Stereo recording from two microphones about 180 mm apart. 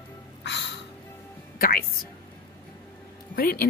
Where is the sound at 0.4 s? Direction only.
75° left (ahead or behind).